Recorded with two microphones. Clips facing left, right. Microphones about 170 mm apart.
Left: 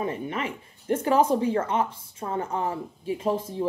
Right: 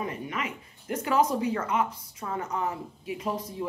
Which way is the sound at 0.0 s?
30° left (ahead or behind).